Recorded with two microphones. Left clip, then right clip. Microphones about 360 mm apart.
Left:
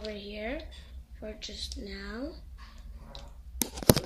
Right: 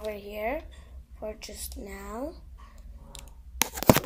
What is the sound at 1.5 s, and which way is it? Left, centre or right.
Speech, right.